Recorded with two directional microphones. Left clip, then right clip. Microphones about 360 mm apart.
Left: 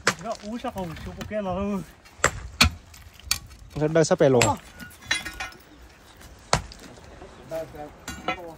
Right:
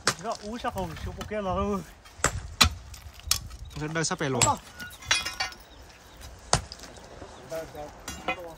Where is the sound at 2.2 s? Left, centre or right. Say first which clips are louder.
Left 5 dB; left.